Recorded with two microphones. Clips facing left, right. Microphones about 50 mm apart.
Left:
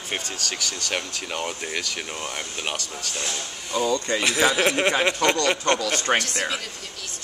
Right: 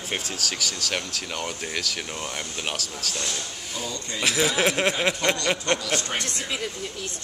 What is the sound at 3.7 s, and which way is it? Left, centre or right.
Speech, left.